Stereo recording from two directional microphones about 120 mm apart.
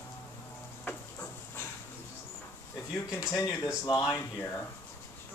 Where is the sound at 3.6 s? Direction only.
30° left (ahead or behind).